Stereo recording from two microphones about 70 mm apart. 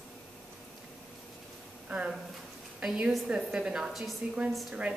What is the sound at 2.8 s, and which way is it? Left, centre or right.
A woman's voice, centre.